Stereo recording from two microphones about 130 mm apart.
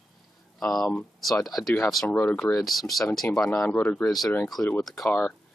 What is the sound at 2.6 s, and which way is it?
Speech, centre (ahead or behind).